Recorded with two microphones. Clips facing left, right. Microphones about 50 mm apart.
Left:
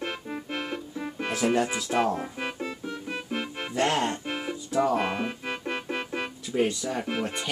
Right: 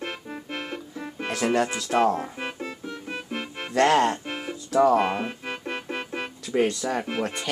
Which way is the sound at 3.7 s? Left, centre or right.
Right.